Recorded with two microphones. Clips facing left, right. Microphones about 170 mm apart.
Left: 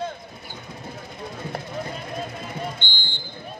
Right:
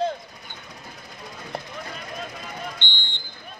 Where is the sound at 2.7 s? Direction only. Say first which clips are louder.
Left 2 dB; 10° left (ahead or behind).